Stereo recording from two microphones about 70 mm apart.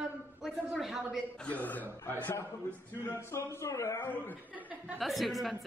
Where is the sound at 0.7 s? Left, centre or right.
Centre.